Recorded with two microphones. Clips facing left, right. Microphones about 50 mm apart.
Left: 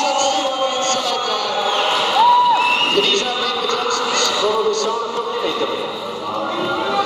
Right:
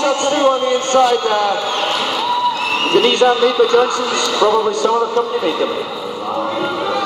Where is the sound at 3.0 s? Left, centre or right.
Centre.